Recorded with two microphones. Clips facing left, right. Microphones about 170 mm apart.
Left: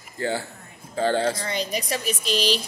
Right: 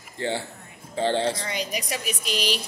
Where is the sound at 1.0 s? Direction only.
25° right (ahead or behind).